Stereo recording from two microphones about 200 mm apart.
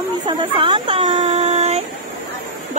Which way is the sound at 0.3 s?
25° right (ahead or behind).